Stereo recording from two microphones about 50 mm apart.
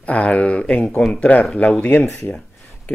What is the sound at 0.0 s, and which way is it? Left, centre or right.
Speech, left.